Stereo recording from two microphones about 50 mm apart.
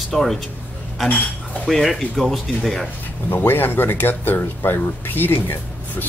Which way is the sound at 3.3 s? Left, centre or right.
Left.